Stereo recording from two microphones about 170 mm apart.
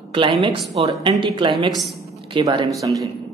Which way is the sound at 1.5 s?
Centre (ahead or behind).